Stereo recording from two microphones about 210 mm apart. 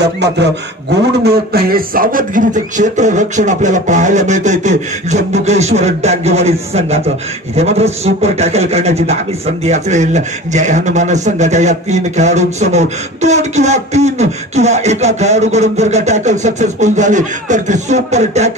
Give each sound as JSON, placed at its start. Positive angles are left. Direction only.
{"t": 0.0, "sound": "a man's voice", "side_deg": -55}